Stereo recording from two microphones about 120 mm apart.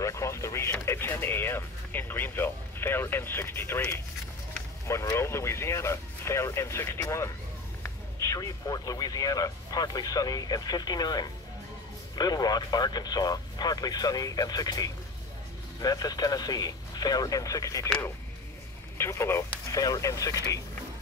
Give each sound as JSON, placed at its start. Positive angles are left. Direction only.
{"t": 0.0, "sound": "speech", "side_deg": 25}
{"t": 18.9, "sound": "speech", "side_deg": 20}